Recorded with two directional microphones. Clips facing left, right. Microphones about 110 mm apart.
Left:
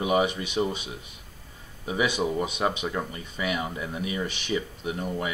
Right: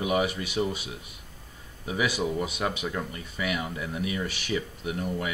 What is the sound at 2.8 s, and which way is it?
Speech, 10° left (ahead or behind).